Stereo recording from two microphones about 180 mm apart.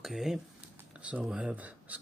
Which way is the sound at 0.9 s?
5° right (ahead or behind).